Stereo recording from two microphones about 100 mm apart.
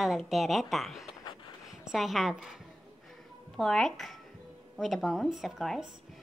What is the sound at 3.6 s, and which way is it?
A woman's voice, 5° left (ahead or behind).